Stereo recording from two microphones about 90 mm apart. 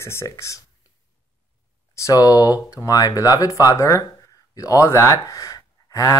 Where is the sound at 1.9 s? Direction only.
40° left (ahead or behind).